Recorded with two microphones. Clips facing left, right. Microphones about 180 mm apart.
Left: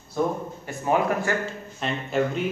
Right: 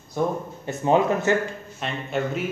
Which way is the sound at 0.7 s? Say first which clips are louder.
Right 3 dB; 25° right (ahead or behind).